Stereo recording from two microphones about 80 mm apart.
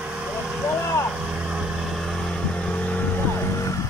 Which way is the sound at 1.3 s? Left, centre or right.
Centre.